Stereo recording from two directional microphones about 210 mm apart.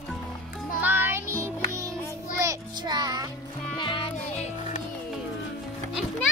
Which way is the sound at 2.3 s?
15° right (ahead or behind).